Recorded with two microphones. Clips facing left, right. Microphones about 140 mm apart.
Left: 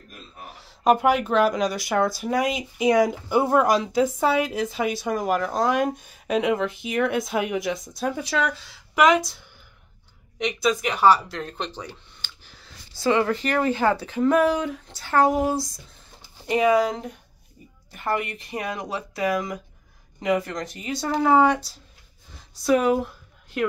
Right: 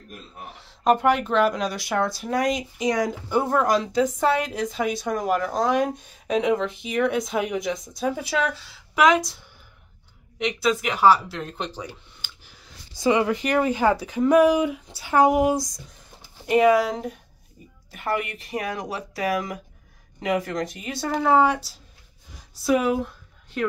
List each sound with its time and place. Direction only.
0.5 s speech: 5° left (ahead or behind)
10.4 s speech: centre (ahead or behind)
16.2 s speech: 5° right (ahead or behind)
18.1 s speech: 30° left (ahead or behind)
20.4 s speech: centre (ahead or behind)